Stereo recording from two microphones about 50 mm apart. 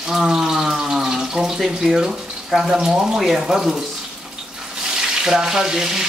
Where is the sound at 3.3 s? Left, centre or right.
Centre.